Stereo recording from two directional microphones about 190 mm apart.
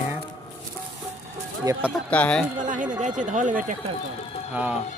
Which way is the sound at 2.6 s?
40° right (ahead or behind).